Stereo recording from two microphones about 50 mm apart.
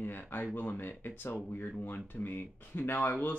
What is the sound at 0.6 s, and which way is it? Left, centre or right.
Speech, left.